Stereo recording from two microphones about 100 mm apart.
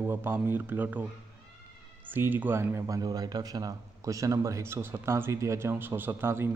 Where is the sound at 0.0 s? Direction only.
20° right (ahead or behind).